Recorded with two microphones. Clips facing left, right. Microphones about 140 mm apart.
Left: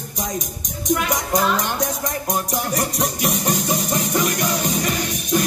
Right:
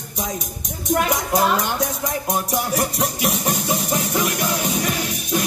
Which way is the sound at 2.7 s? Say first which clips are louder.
Right 1 dB; centre (ahead or behind).